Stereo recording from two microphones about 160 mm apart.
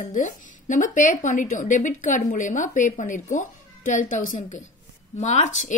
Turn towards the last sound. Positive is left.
turn(degrees=50)  # may be behind; listen again after turning